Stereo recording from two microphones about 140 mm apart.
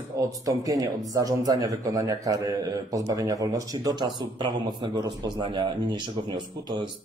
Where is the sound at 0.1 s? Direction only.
25° right (ahead or behind).